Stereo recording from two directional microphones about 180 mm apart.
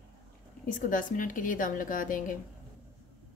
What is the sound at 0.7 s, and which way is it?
Speech, 45° left (ahead or behind).